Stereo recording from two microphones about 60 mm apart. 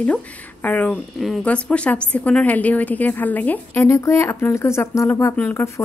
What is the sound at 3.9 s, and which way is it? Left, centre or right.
A woman's voice, left.